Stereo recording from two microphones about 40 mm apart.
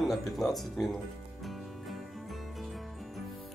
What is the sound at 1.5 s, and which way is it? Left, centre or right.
Music, centre.